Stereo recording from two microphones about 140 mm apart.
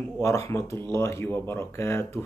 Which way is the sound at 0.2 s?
20° left (ahead or behind).